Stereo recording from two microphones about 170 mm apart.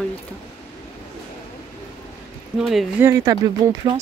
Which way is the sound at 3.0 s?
20° right (ahead or behind).